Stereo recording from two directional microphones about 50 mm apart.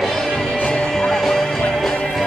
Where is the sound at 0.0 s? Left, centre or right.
Centre.